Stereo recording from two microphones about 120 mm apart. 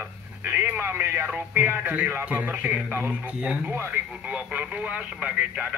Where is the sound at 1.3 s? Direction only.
15° right (ahead or behind).